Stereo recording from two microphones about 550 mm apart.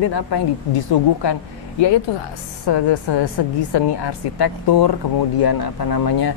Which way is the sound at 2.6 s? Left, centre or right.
Left.